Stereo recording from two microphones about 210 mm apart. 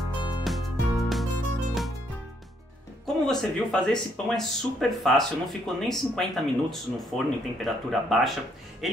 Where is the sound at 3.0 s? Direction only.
Centre (ahead or behind).